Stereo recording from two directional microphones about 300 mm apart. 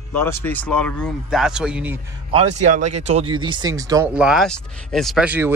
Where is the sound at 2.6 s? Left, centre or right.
Right.